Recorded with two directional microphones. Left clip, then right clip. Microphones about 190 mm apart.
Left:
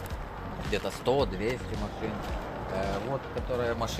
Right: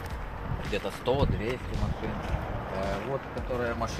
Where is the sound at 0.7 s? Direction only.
50° left (ahead or behind).